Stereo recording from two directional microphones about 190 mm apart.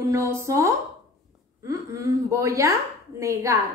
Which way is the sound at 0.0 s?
15° right (ahead or behind).